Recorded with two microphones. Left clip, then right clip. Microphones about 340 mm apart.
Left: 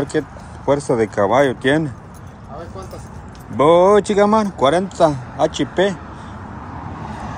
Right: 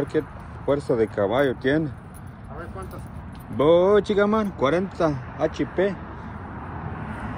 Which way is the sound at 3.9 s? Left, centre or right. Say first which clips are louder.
Left 6 dB; centre.